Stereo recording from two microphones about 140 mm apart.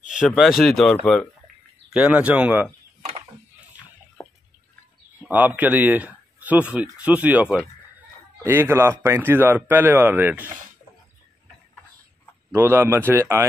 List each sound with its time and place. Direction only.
0.4 s speech: centre (ahead or behind)
1.9 s speech: 5° right (ahead or behind)
4.2 s drip: 20° left (ahead or behind)
5.3 s speech: 10° right (ahead or behind)
12.4 s speech: 15° right (ahead or behind)